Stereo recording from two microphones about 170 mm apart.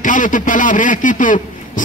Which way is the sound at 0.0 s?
50° left (ahead or behind).